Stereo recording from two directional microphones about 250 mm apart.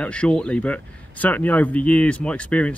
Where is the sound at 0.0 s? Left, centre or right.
Centre.